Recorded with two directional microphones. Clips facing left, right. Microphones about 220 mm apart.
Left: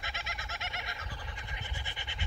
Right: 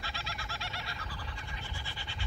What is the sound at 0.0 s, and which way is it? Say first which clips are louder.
Bird: right 1 dB; 20° left (ahead or behind).